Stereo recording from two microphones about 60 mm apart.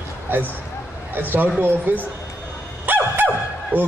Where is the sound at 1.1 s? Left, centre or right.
Right.